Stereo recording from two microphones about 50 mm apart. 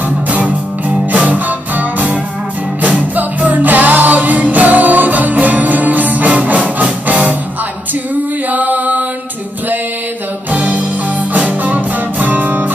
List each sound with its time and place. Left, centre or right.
0.3 s music: right
8.5 s chant: right
10.5 s music: right